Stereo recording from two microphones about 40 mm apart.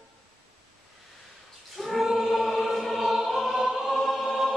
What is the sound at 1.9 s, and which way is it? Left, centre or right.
Choir, centre.